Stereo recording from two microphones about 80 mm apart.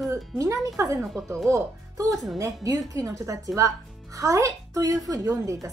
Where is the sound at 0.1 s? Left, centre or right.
Right.